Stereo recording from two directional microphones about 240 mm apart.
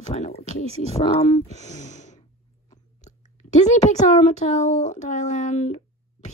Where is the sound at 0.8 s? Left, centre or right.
Left.